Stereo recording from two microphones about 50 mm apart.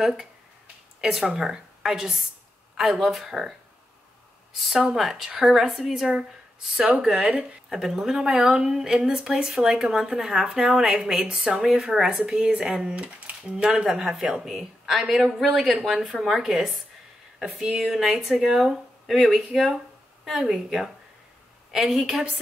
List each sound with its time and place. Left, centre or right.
0.0 s speech: centre
4.8 s speech: centre
12.3 s speech: centre